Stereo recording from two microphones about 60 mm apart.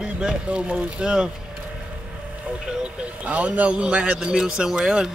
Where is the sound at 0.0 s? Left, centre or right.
Centre.